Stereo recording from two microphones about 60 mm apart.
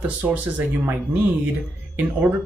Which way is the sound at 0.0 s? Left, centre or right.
Right.